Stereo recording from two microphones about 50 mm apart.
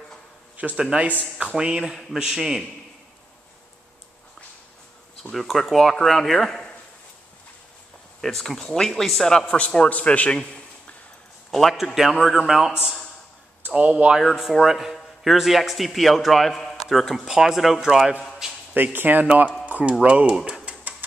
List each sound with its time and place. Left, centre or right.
0.7 s speech: centre
5.3 s a man's voice: centre
8.2 s a man's voice: centre
9.8 s a man's voice: left
11.7 s a man's voice: centre
13.7 s speech: right
14.2 s a man's voice: centre
18.8 s speech: right
19.2 s speech: right